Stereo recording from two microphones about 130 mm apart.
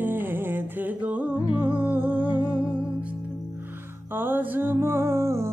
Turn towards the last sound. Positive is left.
turn(degrees=-20)  # may be behind; listen again after turning